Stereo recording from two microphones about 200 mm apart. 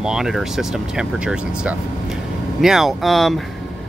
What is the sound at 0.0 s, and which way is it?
Speech, centre (ahead or behind).